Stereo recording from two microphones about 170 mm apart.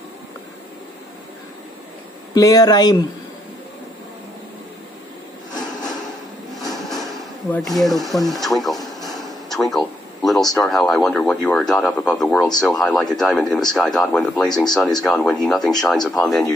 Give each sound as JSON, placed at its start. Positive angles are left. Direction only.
{"t": 2.3, "sound": "speech", "side_deg": 20}
{"t": 6.7, "sound": "speech", "side_deg": 0}